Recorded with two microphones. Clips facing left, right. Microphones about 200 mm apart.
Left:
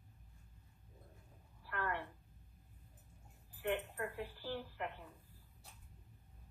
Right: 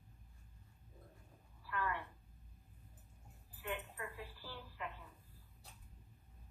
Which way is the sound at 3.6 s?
60° left (ahead or behind).